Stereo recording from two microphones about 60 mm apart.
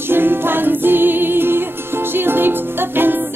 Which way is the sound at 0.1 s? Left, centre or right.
Right.